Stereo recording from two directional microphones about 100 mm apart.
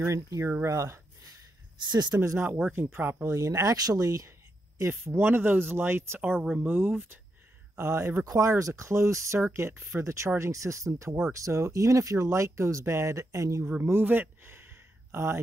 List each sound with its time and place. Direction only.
0.0 s speech: 30° right (ahead or behind)
1.8 s speech: 45° right (ahead or behind)
2.2 s speech: 25° right (ahead or behind)
4.7 s speech: 25° right (ahead or behind)
6.3 s speech: centre (ahead or behind)
6.6 s speech: 20° right (ahead or behind)
13.7 s a sound: 20° right (ahead or behind)